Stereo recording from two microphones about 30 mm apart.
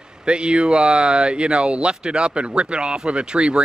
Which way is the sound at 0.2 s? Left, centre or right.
Right.